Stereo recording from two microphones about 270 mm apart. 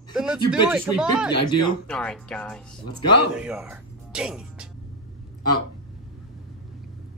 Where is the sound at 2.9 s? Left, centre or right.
Left.